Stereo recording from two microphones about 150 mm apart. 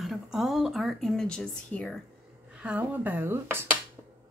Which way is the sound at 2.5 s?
10° right (ahead or behind).